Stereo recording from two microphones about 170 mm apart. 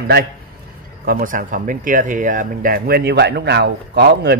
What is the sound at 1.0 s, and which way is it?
Speech, 55° right (ahead or behind).